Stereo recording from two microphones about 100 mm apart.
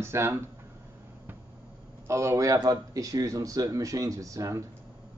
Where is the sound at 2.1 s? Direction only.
30° right (ahead or behind).